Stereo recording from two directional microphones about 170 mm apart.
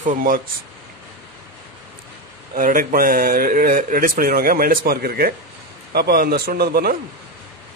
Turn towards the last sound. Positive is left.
turn(degrees=-65)  # may be behind; listen again after turning